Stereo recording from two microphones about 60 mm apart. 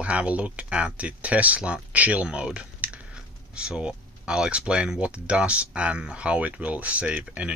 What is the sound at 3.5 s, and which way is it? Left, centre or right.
Speech, centre.